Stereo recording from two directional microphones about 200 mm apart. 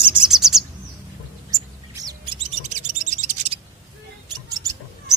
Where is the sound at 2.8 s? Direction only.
40° right (ahead or behind).